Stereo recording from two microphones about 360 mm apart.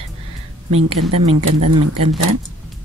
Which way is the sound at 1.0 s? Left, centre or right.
Right.